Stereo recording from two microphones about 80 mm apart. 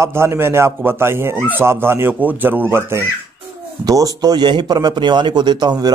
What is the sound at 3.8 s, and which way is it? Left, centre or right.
A man's voice, right.